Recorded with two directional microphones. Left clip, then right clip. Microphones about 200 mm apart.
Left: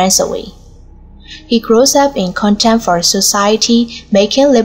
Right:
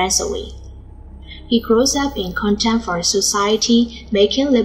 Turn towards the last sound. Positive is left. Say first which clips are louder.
# left 6 dB
turn(degrees=50)  # may be behind; listen again after turning